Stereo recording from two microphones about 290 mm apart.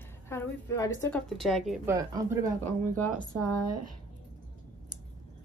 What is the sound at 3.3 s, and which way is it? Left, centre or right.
Speech, right.